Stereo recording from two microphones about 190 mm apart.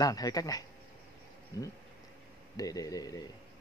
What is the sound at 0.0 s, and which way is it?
Speech, 20° left (ahead or behind).